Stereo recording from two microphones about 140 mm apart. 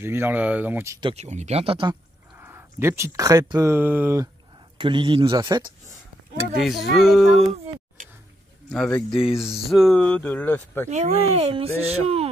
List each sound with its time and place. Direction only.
0.0 s speech: 15° right (ahead or behind)
1.1 s speech: 55° right (ahead or behind)
2.3 s speech: 15° right (ahead or behind)
4.7 s speech: 35° right (ahead or behind)
6.6 s speech: centre (ahead or behind)
8.6 s speech: 5° left (ahead or behind)
10.9 s speech: 55° right (ahead or behind)